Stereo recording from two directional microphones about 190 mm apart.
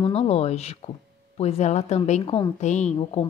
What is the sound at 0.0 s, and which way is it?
A woman's voice, 30° left (ahead or behind).